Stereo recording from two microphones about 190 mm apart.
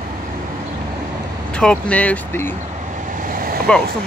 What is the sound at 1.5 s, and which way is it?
Speech, 5° left (ahead or behind).